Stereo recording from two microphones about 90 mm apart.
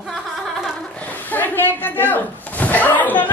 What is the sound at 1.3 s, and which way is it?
Speech, 20° left (ahead or behind).